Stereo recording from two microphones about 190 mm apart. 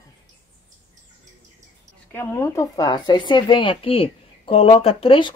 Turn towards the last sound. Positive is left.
turn(degrees=30)  # may be behind; listen again after turning